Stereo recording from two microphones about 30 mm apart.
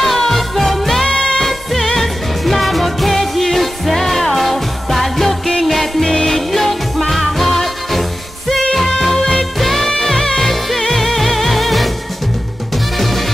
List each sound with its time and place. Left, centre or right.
0.0 s music: centre
1.0 s music: left
1.4 s music: centre
12.9 s music: centre